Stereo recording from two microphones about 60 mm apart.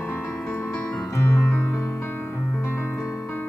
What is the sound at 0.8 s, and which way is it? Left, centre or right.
Music, centre.